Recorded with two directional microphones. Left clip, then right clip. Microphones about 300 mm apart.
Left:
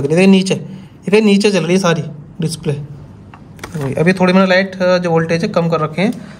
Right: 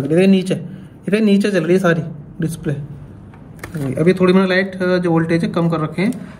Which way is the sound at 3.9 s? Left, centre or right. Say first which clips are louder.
Left 2 dB; left.